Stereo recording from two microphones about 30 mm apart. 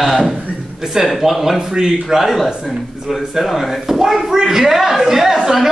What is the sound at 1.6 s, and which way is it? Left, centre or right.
A man's voice, centre.